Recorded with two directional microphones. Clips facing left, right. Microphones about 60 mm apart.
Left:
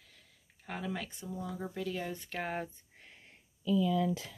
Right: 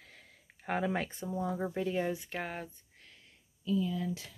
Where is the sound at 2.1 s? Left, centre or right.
Centre.